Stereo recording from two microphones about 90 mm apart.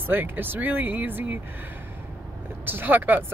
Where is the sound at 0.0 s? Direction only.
20° right (ahead or behind).